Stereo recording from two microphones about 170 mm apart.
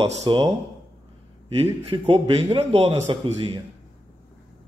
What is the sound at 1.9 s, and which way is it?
A man's voice, 35° right (ahead or behind).